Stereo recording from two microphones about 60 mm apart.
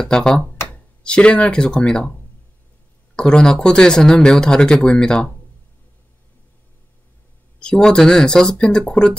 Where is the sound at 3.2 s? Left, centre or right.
Centre.